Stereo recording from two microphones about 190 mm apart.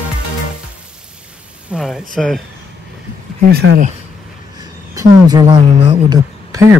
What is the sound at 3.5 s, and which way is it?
Speech, 60° right (ahead or behind).